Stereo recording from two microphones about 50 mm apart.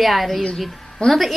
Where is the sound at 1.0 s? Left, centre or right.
Centre.